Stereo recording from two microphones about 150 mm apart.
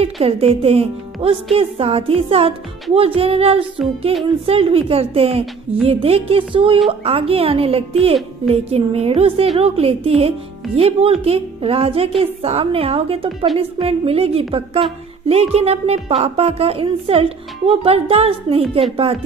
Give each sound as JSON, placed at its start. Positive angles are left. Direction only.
{"t": 0.0, "sound": "a woman's voice", "side_deg": -40}